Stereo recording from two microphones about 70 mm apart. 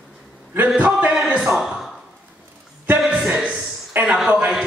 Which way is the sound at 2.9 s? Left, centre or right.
Centre.